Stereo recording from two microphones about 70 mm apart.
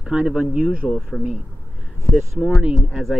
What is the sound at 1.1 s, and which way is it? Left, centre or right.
Speech, centre.